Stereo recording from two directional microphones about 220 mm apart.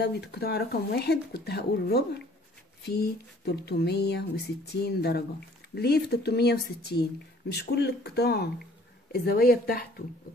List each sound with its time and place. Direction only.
0.0 s speech: 50° left (ahead or behind)